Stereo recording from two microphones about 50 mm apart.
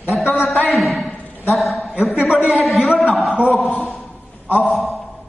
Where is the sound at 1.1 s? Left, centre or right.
Left.